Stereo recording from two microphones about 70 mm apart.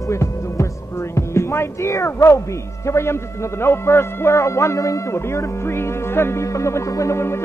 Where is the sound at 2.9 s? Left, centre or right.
Left.